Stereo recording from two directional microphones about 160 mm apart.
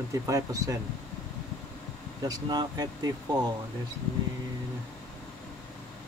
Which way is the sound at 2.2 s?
25° right (ahead or behind).